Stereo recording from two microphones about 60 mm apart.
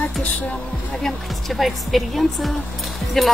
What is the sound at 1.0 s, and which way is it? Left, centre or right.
A woman's voice, centre.